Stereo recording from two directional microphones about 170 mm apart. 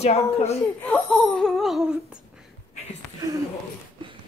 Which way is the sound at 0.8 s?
5° left (ahead or behind).